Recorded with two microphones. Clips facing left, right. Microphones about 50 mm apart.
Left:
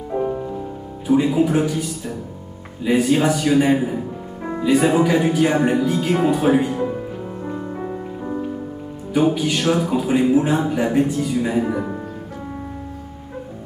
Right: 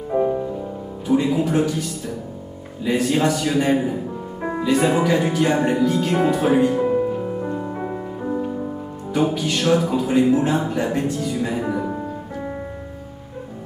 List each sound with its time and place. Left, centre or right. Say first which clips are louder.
0.1 s music: right 3 dB; centre
1.0 s speech: left 2 dB; centre
7.4 s music: right 1 dB; centre
9.1 s speech: left 3 dB; centre